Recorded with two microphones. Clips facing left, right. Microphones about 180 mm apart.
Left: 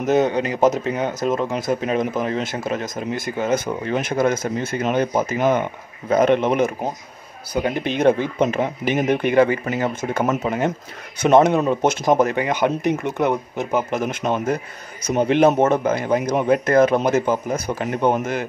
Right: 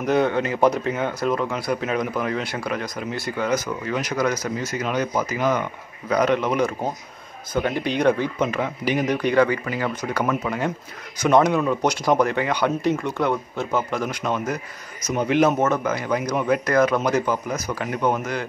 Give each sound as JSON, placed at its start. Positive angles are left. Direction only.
{"t": 0.0, "sound": "a man's voice", "side_deg": 20}